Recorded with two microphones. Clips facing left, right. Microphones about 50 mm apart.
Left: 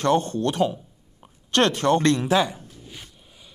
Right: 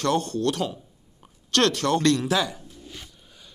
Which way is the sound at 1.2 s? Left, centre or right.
Left.